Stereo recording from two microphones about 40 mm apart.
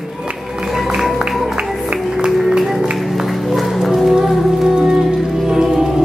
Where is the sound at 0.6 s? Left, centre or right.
Centre.